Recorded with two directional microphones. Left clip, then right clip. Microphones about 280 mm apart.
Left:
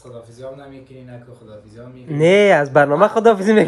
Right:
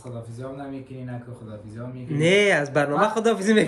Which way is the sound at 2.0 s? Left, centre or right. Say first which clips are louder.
Left 7 dB; left.